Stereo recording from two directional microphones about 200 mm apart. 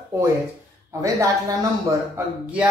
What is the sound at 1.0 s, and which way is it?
Speech, 15° right (ahead or behind).